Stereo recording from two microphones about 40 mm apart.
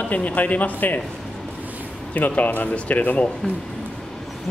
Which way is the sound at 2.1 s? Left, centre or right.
Left.